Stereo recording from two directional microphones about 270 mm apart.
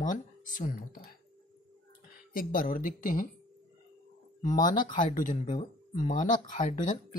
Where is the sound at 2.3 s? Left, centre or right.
Left.